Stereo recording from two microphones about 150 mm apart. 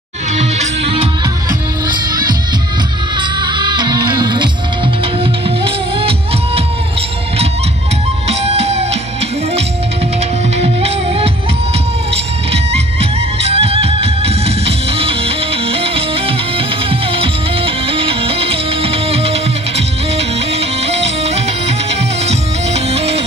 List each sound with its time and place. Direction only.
0.4 s music: 45° right (ahead or behind)
1.9 s music: 30° right (ahead or behind)
8.3 s music: 45° right (ahead or behind)
10.6 s music: 40° right (ahead or behind)
12.7 s music: 40° right (ahead or behind)